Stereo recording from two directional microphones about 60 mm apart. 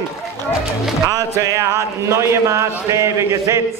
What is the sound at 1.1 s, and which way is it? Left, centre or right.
Speech, right.